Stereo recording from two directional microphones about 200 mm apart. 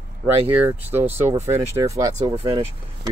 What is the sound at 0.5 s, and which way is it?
Speech, 10° right (ahead or behind).